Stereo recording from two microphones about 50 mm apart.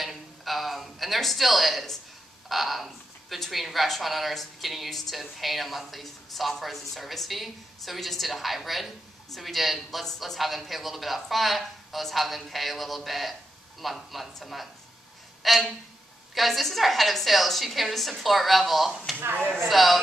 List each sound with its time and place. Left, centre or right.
0.0 s a sound: centre
2.4 s speech: centre
19.1 s speech: right
19.7 s speech: centre